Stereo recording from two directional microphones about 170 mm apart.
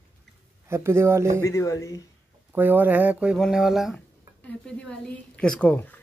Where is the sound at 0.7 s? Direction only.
15° right (ahead or behind).